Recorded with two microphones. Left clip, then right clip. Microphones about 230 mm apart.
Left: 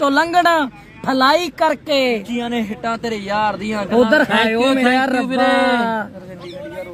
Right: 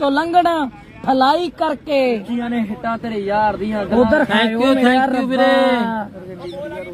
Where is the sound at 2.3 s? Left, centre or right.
Left.